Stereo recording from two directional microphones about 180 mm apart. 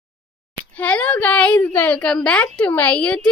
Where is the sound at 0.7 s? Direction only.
5° left (ahead or behind).